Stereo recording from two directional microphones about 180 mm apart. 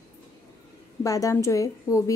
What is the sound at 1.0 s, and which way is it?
A woman's voice, 20° left (ahead or behind).